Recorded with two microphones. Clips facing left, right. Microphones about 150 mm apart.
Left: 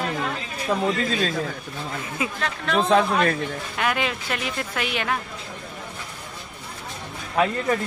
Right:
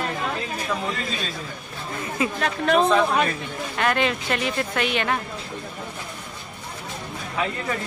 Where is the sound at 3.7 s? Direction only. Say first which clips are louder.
Right 3 dB; 5° left (ahead or behind).